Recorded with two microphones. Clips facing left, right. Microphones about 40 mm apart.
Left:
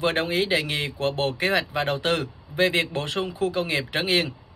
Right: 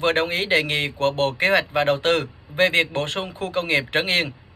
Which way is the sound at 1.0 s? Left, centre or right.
Right.